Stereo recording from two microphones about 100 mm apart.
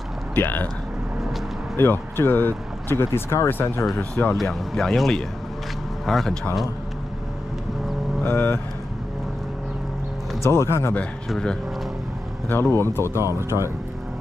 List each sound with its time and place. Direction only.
0.4 s speech: 20° left (ahead or behind)
1.8 s speech: 20° left (ahead or behind)
4.4 s speech: centre (ahead or behind)
8.2 s speech: 20° left (ahead or behind)
10.4 s speech: 25° left (ahead or behind)
11.2 s speech: 5° left (ahead or behind)
12.7 s speech: 25° left (ahead or behind)
13.1 s speech: 25° right (ahead or behind)